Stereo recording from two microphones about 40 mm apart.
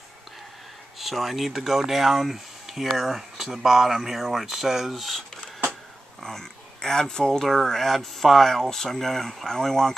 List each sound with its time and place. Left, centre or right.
0.9 s speech: centre
6.2 s speech: centre
7.4 s speech: centre